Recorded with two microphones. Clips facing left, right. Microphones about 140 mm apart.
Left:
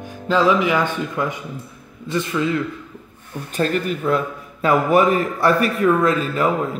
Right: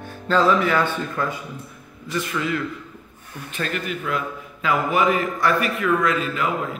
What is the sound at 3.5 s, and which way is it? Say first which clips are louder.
A man's voice: left 7 dB; 40° left (ahead or behind).